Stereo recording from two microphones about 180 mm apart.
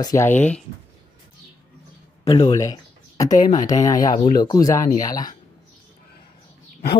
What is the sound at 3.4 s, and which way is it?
Speech, 20° left (ahead or behind).